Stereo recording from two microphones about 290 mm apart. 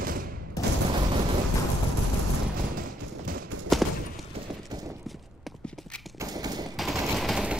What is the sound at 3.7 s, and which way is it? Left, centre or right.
Clip-clop, centre.